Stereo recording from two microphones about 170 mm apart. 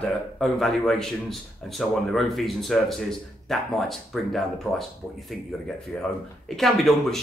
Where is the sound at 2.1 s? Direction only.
Centre (ahead or behind).